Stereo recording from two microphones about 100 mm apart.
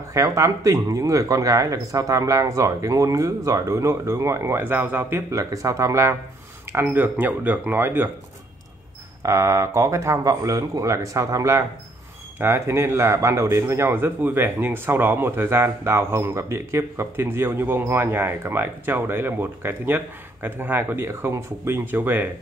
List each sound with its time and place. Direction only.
0.1 s speech: 30° right (ahead or behind)
5.3 s speech: 35° right (ahead or behind)
6.7 s speech: 20° right (ahead or behind)
9.2 s speech: 25° right (ahead or behind)